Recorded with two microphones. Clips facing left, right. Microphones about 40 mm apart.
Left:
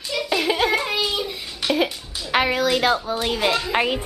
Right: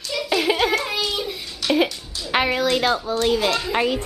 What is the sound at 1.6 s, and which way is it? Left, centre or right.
Music, left.